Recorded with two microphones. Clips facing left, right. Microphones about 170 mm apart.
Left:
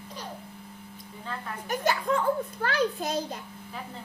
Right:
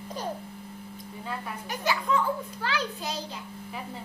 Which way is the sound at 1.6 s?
50° left (ahead or behind).